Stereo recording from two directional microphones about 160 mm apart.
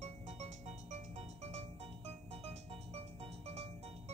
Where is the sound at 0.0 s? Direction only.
45° right (ahead or behind).